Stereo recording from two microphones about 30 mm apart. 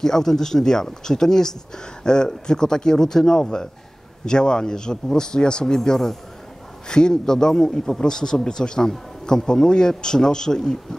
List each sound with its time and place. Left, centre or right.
0.0 s a man's voice: centre
6.9 s a man's voice: left